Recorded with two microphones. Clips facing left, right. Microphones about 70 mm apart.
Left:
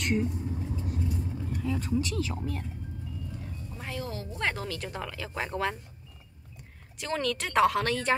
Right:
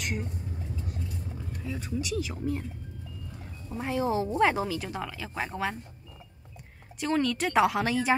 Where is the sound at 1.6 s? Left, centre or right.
Centre.